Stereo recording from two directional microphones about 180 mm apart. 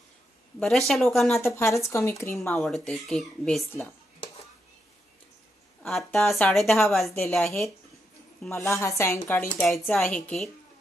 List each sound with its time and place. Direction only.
0.6 s speech: centre (ahead or behind)
1.4 s speech: 15° left (ahead or behind)
5.8 s speech: centre (ahead or behind)
8.4 s speech: 15° left (ahead or behind)
9.6 s speech: centre (ahead or behind)